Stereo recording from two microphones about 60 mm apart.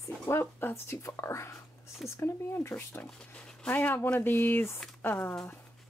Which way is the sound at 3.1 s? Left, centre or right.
Centre.